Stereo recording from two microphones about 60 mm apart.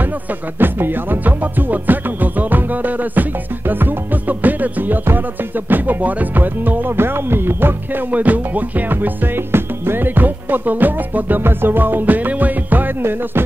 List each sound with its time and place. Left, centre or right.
0.0 s music: right